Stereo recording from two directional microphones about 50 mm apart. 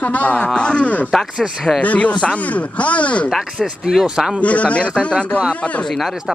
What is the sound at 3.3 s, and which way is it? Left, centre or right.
Speech, centre.